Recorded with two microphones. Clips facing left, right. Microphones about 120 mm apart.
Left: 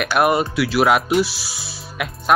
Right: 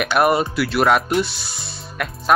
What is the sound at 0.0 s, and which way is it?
Speech, centre (ahead or behind).